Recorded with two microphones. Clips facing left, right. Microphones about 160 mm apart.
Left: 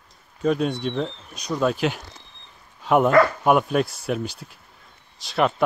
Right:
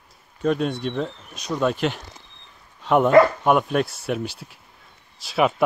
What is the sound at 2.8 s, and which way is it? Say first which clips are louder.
Dog: even; 5° left (ahead or behind).